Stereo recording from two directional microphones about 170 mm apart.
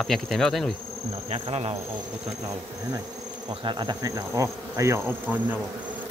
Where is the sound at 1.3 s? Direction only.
35° right (ahead or behind).